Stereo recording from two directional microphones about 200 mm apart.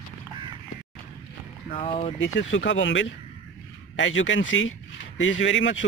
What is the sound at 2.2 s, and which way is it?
Speech, 70° left (ahead or behind).